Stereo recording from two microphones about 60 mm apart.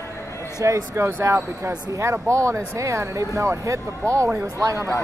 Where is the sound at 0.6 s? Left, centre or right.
Right.